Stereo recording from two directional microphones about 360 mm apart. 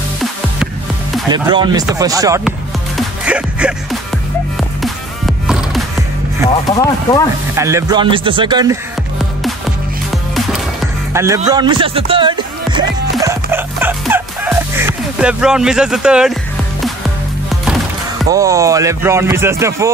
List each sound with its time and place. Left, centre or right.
1.3 s speech: centre
3.0 s music: centre
4.8 s music: centre
6.7 s speech: centre
7.5 s speech: centre
10.1 s music: centre
11.1 s speech: centre
13.1 s music: centre
18.3 s speech: centre